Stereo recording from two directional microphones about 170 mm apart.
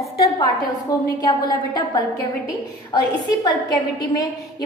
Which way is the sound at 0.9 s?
25° left (ahead or behind).